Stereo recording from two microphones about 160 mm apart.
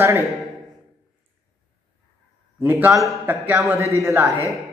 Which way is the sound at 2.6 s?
15° right (ahead or behind).